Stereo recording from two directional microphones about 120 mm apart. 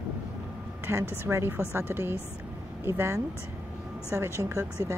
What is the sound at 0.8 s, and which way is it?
A woman's voice, 20° right (ahead or behind).